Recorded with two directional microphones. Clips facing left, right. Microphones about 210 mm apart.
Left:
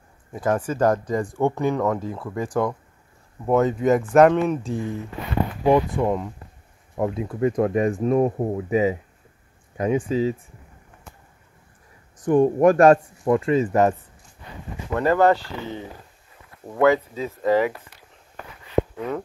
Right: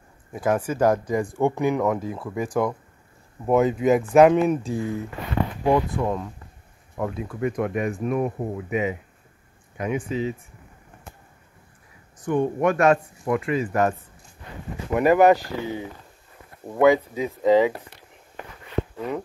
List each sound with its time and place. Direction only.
0.3 s speech: 10° right (ahead or behind)
5.7 s speech: 15° left (ahead or behind); by 10.3 s 35° left (ahead or behind)
12.3 s speech: 35° left (ahead or behind)
15.0 s speech: 15° right (ahead or behind)
18.9 s speech: 5° right (ahead or behind)